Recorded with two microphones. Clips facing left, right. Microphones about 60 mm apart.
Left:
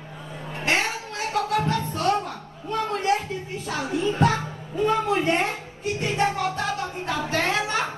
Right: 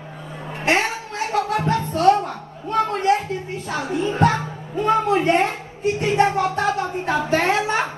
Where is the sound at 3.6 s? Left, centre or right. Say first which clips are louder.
Right 2 dB; right.